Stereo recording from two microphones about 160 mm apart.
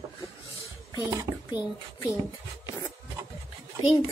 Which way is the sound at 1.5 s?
30° left (ahead or behind).